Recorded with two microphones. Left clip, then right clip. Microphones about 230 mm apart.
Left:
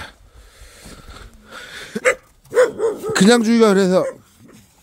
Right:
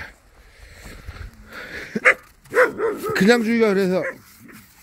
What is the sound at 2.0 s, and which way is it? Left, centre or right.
Dog, left.